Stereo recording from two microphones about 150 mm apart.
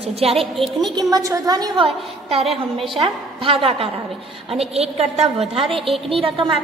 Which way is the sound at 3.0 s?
40° right (ahead or behind).